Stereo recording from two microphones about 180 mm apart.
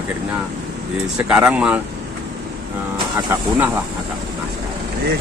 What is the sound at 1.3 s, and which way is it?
Speech, 5° right (ahead or behind).